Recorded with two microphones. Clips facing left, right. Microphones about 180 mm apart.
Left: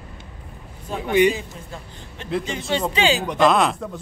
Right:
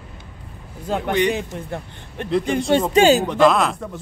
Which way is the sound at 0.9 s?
85° right.